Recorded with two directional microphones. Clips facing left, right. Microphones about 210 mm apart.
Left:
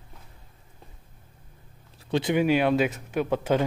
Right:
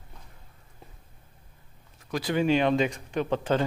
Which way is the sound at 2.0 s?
30° left (ahead or behind).